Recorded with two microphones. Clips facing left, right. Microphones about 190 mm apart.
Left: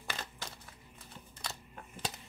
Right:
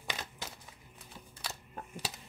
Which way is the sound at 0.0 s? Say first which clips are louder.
Right 1 dB; 10° right (ahead or behind).